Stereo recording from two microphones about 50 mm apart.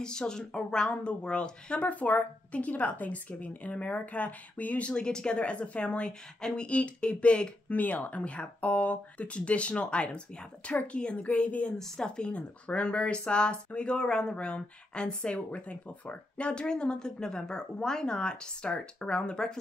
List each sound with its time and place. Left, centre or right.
0.0 s speech: centre
11.8 s speech: centre